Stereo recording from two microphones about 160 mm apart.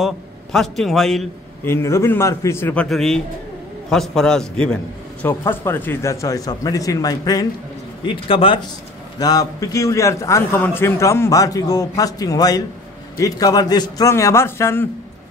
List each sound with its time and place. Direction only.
0.0 s a man's voice: centre (ahead or behind)
1.6 s a man's voice: 15° left (ahead or behind)
8.0 s a man's voice: 35° left (ahead or behind)
9.2 s a man's voice: 25° left (ahead or behind)